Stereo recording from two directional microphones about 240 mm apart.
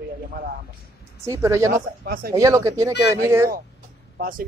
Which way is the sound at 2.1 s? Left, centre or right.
Right.